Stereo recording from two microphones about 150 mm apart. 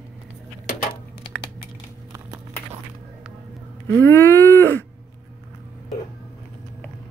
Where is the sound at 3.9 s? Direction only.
15° left (ahead or behind).